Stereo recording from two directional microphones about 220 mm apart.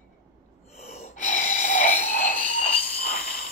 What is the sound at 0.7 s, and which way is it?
Gasp, 30° left (ahead or behind).